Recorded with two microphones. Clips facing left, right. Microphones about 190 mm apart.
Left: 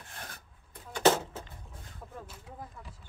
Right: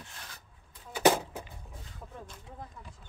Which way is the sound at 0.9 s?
10° right (ahead or behind).